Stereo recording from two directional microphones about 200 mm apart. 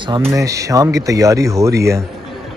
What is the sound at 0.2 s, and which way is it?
Speech, 15° right (ahead or behind).